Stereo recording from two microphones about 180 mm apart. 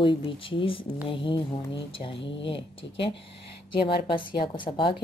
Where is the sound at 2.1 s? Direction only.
85° left.